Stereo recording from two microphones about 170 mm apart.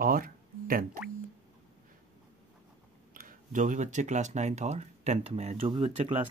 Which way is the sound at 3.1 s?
50° right (ahead or behind).